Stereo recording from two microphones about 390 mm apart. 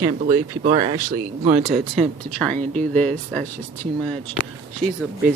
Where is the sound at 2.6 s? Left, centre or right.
Centre.